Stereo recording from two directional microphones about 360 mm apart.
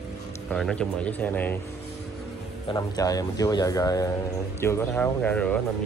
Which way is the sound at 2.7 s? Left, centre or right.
Centre.